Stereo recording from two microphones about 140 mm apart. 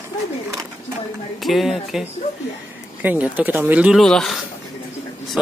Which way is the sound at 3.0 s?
10° right (ahead or behind).